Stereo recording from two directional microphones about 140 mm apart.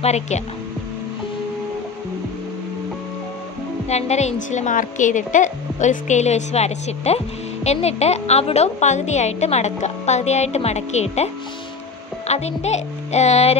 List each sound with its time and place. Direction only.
0.0 s a woman's voice: 50° left (ahead or behind)
3.9 s a woman's voice: 55° left (ahead or behind)
12.3 s a woman's voice: 50° left (ahead or behind)